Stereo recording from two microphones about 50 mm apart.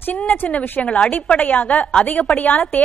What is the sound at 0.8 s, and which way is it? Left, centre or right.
Speech, left.